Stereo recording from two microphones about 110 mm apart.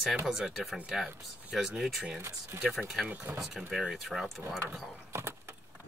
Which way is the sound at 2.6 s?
5° right (ahead or behind).